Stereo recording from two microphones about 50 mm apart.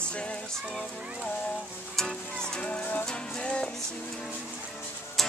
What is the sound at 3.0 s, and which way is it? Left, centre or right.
Music, centre.